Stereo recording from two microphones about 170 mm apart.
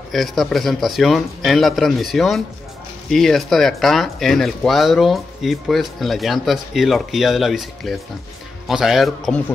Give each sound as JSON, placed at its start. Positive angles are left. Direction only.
{"t": 0.1, "sound": "speech", "side_deg": 0}